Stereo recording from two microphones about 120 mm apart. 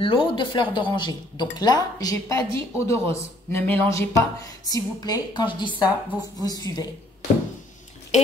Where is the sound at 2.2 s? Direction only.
20° left (ahead or behind).